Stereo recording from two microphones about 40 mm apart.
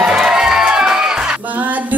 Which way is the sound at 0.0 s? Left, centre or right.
Centre.